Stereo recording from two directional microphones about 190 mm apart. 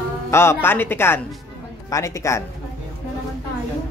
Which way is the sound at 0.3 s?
15° left (ahead or behind).